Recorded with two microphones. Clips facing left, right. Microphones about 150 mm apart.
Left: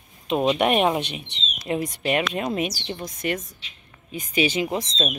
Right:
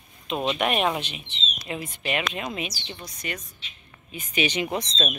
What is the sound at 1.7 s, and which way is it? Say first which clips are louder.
Speech: left 6 dB; 45° left (ahead or behind).